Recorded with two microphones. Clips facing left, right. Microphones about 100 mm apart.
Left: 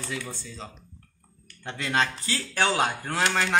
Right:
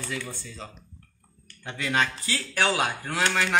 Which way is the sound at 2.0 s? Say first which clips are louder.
Left 1 dB; 30° left (ahead or behind).